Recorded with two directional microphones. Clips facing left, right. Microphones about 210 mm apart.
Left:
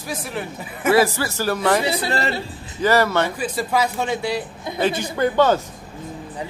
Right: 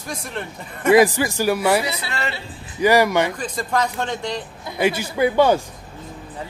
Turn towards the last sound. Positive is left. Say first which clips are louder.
# right 1 dB
turn(degrees=-10)  # may be behind; listen again after turning